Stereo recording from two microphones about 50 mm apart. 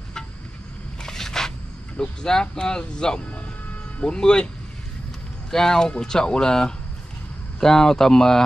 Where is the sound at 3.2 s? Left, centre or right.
Left.